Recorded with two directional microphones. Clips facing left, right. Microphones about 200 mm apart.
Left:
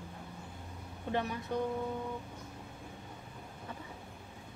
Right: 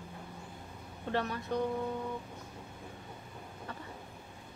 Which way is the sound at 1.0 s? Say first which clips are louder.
Right 1 dB; 15° left (ahead or behind).